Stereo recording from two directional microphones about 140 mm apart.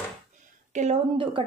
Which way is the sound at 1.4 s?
35° right (ahead or behind).